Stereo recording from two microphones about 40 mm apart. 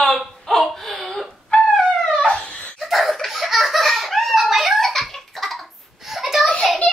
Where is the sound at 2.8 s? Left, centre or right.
Centre.